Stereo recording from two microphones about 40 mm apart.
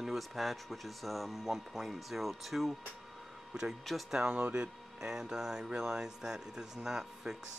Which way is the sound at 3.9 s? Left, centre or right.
Centre.